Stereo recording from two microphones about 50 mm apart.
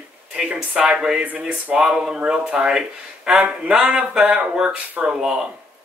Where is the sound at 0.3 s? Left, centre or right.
Right.